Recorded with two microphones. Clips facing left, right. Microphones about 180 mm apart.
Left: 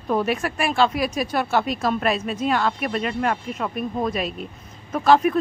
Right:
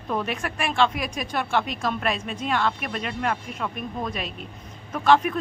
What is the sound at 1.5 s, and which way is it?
Speech, 40° left (ahead or behind).